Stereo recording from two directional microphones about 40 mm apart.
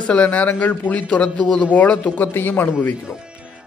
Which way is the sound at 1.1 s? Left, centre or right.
Left.